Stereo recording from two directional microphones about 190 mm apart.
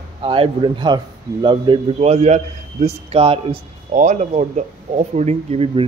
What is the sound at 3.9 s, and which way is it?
A man's voice, 40° right (ahead or behind).